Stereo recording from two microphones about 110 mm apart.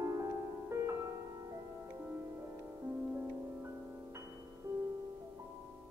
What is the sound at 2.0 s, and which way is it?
Music, 25° right (ahead or behind).